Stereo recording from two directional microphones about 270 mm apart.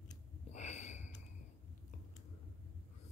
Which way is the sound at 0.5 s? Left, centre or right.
Left.